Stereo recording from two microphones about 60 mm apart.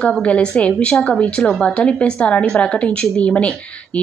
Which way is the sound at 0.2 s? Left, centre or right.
Centre.